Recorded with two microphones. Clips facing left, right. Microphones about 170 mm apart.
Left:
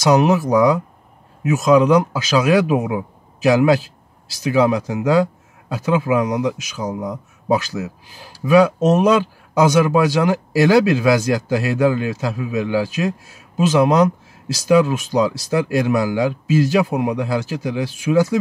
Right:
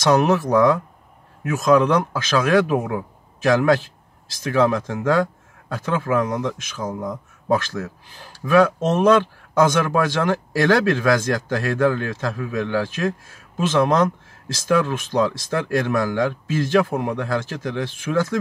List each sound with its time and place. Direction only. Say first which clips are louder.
0.0 s speech: left 2 dB; 10° left (ahead or behind)